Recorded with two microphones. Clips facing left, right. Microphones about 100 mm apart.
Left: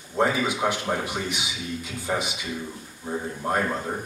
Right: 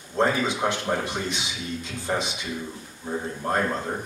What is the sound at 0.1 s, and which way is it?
Speech, 10° left (ahead or behind).